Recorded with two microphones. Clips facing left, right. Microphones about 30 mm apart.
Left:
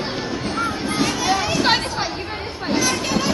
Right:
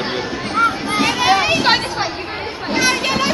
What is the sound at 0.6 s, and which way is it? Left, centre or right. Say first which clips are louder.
Children playing: right 7 dB; right.